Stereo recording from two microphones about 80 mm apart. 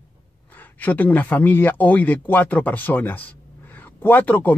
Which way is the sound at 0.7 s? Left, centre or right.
Left.